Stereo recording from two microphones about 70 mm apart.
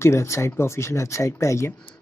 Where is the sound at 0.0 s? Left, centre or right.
Left.